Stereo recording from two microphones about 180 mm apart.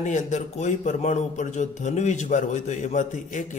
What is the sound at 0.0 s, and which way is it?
A man's voice, 45° left (ahead or behind).